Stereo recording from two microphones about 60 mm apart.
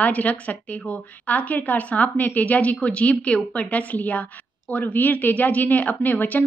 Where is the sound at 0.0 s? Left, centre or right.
Left.